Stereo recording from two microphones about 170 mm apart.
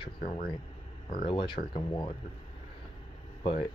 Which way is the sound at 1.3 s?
30° left (ahead or behind).